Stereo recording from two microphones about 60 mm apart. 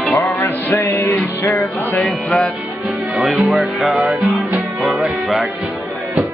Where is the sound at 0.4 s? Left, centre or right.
Left.